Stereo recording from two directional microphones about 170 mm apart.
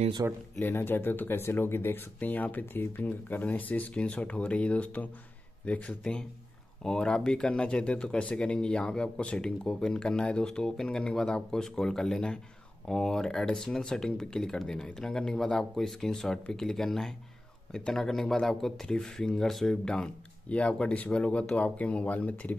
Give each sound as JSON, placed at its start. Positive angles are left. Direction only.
{"t": 0.2, "sound": "speech", "side_deg": -20}
{"t": 0.6, "sound": "speech", "side_deg": 10}